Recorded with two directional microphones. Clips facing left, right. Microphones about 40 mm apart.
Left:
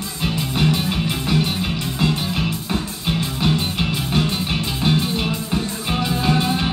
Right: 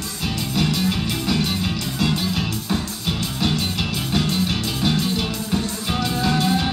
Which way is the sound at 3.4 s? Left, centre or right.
Left.